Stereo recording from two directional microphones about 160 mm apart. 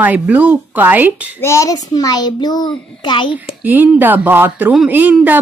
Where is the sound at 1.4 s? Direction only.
20° left (ahead or behind).